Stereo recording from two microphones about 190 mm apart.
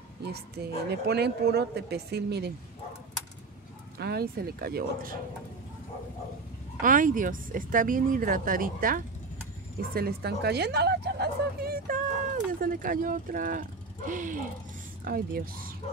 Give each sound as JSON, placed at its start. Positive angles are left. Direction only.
{"t": 0.2, "sound": "a woman's voice", "side_deg": -60}
{"t": 4.0, "sound": "speech", "side_deg": -55}
{"t": 6.8, "sound": "a woman's voice", "side_deg": -45}